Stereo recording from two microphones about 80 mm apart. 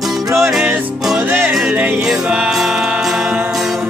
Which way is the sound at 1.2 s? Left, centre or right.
Right.